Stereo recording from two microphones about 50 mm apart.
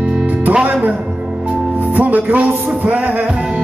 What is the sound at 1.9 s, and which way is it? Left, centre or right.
Music, right.